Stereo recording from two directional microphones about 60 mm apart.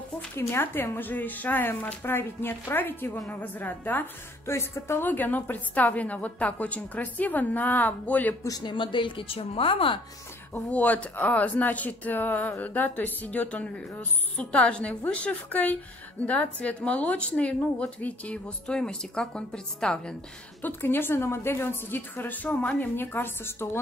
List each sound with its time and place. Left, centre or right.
0.4 s a woman's voice: left
4.5 s a woman's voice: left
5.0 s a woman's voice: left
10.7 s a woman's voice: left
20.6 s a woman's voice: left